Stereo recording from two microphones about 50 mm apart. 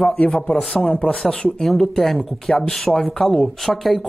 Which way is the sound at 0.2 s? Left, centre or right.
Centre.